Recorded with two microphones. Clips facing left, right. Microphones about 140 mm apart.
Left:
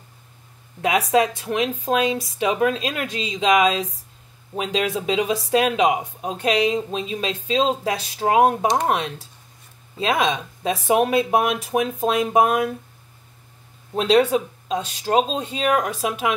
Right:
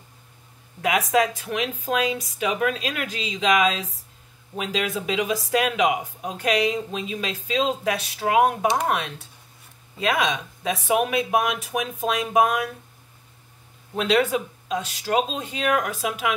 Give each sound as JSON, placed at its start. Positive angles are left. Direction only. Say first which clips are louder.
{"t": 0.8, "sound": "speech", "louder": "left 2 dB", "side_deg": 30}
{"t": 13.9, "sound": "speech", "louder": "left 4 dB", "side_deg": 30}